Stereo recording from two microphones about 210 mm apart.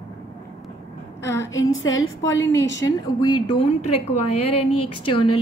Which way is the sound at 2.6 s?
60° left (ahead or behind).